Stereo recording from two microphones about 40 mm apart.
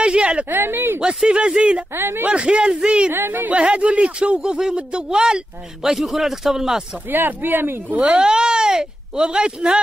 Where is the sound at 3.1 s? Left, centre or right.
Right.